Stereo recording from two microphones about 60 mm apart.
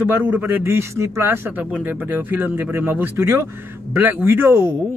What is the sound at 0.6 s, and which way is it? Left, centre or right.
Speech, right.